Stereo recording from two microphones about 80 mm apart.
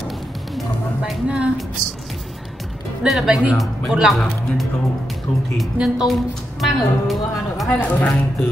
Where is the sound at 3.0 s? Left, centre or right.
Centre.